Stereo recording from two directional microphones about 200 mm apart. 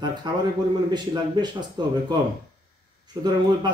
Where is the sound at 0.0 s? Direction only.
20° right (ahead or behind).